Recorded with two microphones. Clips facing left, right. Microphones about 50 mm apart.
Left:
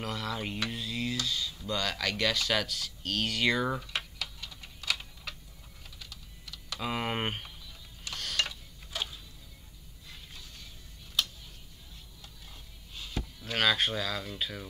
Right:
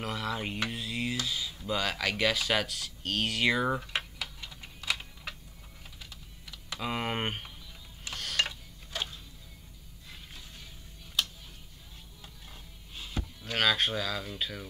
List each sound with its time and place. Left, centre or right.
0.0 s speech: centre
3.8 s typing: centre
6.8 s speech: centre
8.1 s a sound: centre
11.2 s tick-tock: centre
12.9 s music: centre
13.5 s speech: centre